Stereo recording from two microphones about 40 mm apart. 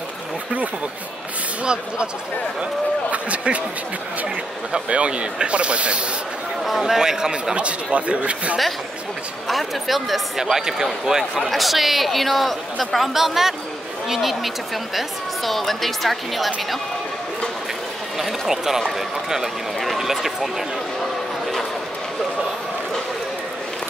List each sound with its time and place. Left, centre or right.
1.6 s speech: right
3.1 s speech: right
4.7 s speech: right
6.8 s speech: centre
7.5 s speech: right
9.5 s speech: centre
10.4 s speech: centre
18.5 s speech: centre